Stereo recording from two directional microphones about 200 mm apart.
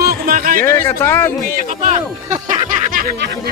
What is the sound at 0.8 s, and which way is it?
Speech, 10° left (ahead or behind).